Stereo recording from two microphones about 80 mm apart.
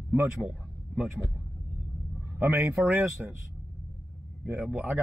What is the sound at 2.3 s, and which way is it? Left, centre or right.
A man's voice, right.